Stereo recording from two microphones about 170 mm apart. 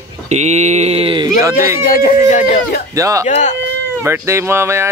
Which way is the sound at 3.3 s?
45° left (ahead or behind).